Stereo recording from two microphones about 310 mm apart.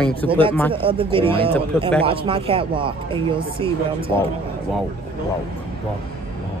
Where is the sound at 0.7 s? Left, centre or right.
Centre.